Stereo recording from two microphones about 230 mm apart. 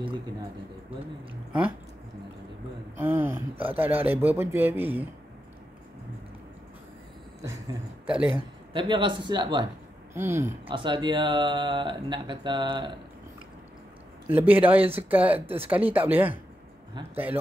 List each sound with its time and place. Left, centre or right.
3.0 s a sound: centre
3.5 s speech: centre
7.4 s speech: centre
8.7 s speech: right
14.2 s speech: centre
15.4 s speech: right
15.7 s speech: centre